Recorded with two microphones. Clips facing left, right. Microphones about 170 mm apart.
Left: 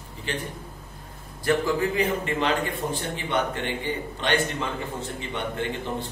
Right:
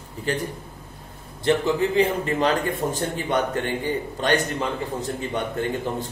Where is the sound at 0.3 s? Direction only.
40° right (ahead or behind).